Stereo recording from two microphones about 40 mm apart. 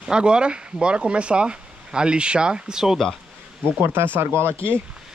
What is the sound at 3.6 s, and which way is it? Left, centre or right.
Speech, right.